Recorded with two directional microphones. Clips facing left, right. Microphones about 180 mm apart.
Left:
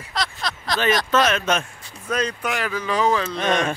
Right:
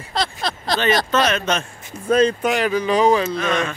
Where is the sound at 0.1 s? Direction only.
30° right (ahead or behind).